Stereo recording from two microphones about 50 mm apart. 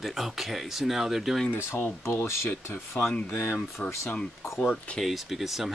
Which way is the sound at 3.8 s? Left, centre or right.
Left.